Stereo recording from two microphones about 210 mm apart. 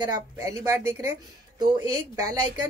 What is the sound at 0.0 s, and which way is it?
A woman's voice, 15° right (ahead or behind).